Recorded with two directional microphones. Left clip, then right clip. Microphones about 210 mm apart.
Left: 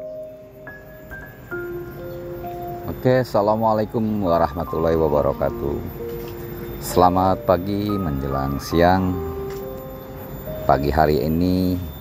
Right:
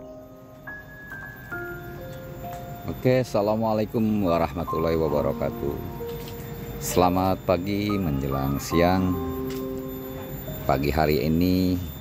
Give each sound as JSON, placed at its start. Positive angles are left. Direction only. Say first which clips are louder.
{"t": 3.0, "sound": "speech", "louder": "left 4 dB", "side_deg": -10}
{"t": 6.9, "sound": "speech", "louder": "left 5 dB", "side_deg": 0}
{"t": 10.7, "sound": "speech", "louder": "left 6 dB", "side_deg": -5}